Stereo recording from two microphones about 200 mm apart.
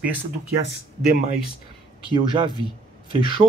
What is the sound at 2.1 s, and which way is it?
Speech, 25° right (ahead or behind).